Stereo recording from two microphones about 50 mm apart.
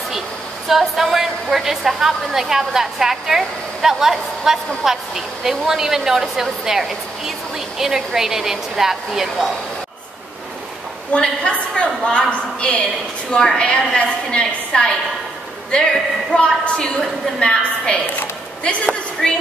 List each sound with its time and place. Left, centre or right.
0.7 s a woman's voice: centre
11.1 s a woman's voice: left
19.2 s a woman's voice: centre